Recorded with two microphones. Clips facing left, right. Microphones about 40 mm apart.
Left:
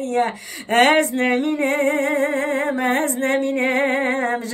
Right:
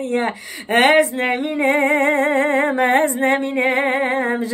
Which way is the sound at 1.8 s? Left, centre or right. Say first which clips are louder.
Right 3 dB; right.